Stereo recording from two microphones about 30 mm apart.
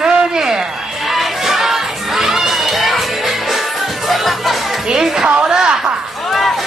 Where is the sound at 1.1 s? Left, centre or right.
Centre.